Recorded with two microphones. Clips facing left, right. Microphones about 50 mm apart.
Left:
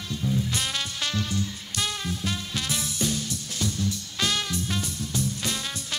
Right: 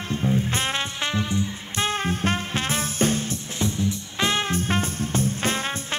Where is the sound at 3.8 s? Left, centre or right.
Right.